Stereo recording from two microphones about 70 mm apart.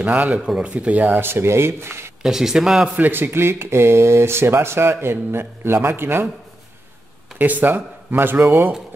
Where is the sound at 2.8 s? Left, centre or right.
Right.